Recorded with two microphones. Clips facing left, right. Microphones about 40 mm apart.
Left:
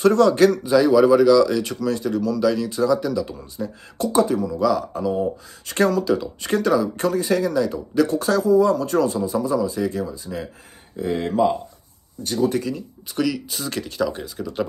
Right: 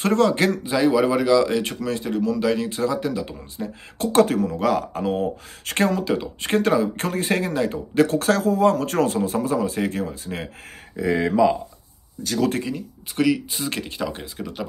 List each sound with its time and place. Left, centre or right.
0.0 s speech: right
0.3 s speech: right
4.1 s speech: right
5.9 s speech: right
11.0 s speech: right
12.6 s speech: right